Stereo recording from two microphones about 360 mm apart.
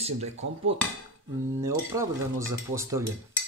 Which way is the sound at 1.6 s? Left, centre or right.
Centre.